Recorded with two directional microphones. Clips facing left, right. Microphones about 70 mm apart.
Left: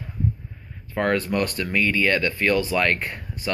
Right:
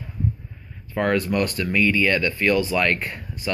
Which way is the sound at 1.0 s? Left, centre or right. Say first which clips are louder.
Right 1 dB; left.